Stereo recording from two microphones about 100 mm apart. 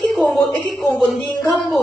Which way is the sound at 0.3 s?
Centre (ahead or behind).